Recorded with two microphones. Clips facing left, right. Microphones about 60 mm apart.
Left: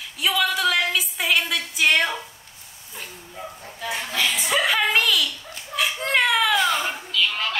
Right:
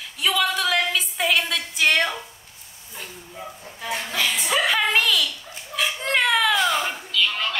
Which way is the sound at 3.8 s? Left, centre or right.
Centre.